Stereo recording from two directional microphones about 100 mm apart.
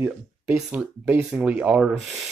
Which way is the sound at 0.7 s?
20° right (ahead or behind).